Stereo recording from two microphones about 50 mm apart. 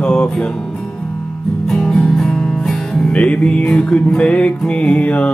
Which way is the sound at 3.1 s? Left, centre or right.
Left.